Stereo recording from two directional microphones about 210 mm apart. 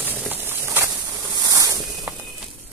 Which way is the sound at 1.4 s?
15° right (ahead or behind).